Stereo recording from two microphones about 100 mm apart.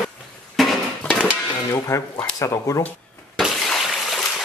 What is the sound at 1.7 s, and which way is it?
Speech, 25° left (ahead or behind).